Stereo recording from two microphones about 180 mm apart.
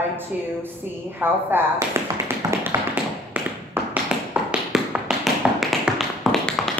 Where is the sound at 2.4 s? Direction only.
15° right (ahead or behind).